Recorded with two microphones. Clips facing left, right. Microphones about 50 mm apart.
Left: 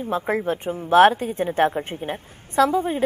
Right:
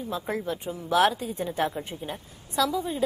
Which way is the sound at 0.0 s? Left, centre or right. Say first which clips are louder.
Left 7 dB; left.